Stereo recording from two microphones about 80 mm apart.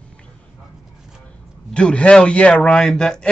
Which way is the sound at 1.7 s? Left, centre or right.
Centre.